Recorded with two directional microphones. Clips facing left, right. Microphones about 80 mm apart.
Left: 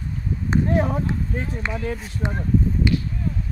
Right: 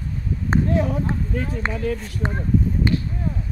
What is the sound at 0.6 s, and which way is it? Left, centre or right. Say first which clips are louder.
Speech: even; left.